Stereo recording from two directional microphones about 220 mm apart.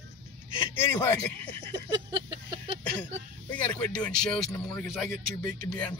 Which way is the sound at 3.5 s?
5° left (ahead or behind).